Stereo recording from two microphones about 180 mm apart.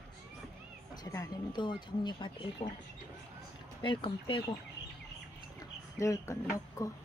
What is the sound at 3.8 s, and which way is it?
Speech, 30° left (ahead or behind).